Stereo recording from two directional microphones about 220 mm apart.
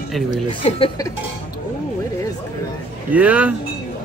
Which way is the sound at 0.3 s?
25° left (ahead or behind).